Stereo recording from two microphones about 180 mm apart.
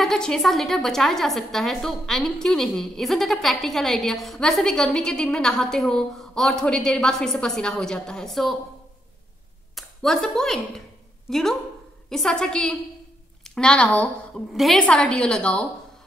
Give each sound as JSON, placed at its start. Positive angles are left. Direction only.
{"t": 0.0, "sound": "a woman's voice", "side_deg": 5}
{"t": 9.8, "sound": "a woman's voice", "side_deg": 0}